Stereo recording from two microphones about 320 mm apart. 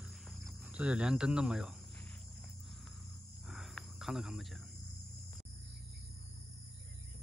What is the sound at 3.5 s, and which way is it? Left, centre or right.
Cricket, centre.